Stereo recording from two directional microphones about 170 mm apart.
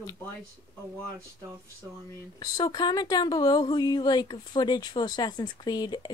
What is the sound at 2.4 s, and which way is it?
Speech, 25° left (ahead or behind).